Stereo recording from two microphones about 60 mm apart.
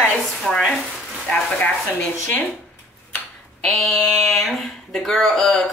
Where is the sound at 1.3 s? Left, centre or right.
Left.